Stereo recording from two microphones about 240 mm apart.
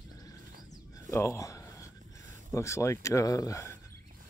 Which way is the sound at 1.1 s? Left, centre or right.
Centre.